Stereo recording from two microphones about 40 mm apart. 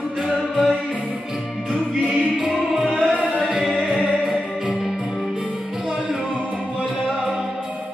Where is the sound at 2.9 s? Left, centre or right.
Right.